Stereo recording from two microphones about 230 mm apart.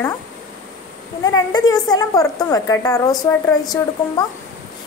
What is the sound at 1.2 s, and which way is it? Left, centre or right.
A woman's voice, centre.